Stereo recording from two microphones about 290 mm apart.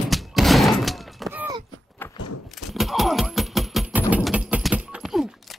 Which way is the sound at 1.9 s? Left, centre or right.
Centre.